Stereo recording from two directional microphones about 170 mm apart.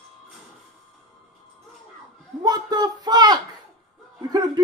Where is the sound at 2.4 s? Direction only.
25° right (ahead or behind).